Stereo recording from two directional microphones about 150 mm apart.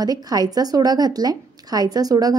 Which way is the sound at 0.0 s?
25° right (ahead or behind).